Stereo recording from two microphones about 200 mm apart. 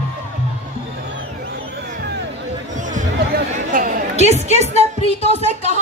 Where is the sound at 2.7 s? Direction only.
40° right (ahead or behind).